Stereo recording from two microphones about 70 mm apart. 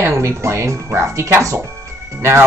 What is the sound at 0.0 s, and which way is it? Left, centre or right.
Speech, right.